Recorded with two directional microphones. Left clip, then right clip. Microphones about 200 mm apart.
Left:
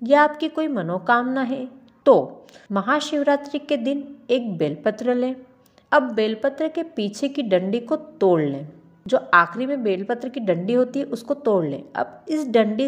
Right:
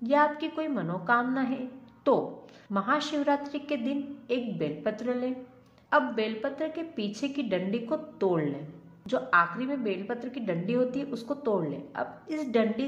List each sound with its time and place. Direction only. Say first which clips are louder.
0.0 s a woman's voice: left 8 dB; 35° left (ahead or behind)